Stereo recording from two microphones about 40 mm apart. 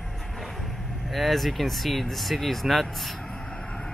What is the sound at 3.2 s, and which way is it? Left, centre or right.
Vehicle, centre.